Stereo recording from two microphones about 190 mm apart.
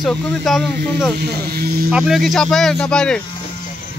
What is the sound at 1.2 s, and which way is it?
Speech, 55° right (ahead or behind).